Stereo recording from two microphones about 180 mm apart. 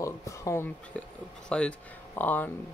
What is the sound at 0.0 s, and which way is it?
Speech, 15° left (ahead or behind).